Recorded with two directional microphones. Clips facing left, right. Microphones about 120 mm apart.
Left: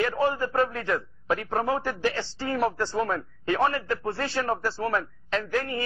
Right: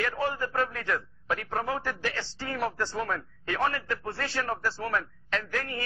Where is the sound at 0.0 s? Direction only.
25° left (ahead or behind).